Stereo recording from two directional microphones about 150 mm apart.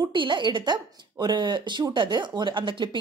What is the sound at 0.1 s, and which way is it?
A woman's voice, 30° right (ahead or behind).